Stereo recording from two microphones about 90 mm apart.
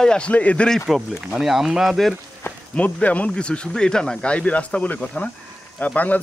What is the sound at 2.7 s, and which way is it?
Speech, 15° left (ahead or behind).